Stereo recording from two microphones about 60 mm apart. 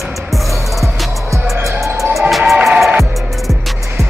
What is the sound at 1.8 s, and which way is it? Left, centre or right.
Music, right.